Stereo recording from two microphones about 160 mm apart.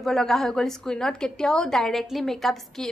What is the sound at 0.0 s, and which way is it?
A woman's voice, centre (ahead or behind).